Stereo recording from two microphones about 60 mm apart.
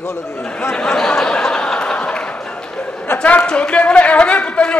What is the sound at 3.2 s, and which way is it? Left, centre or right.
A man's voice, left.